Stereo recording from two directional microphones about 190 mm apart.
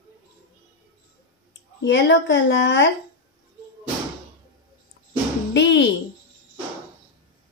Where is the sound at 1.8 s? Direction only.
70° left (ahead or behind).